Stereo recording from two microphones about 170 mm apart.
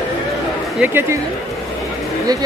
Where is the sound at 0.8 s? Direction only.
10° right (ahead or behind).